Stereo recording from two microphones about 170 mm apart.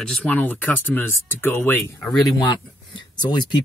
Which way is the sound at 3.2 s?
25° left (ahead or behind).